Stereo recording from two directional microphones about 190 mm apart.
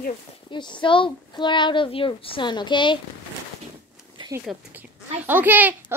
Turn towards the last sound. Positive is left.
turn(degrees=-10)  # may be behind; listen again after turning